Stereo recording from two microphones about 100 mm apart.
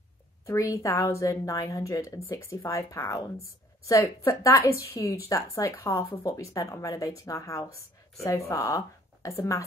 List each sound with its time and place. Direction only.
0.5 s a woman's voice: 30° left (ahead or behind)